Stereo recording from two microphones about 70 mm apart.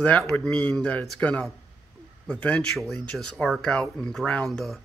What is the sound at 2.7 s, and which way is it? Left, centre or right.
Speech, centre.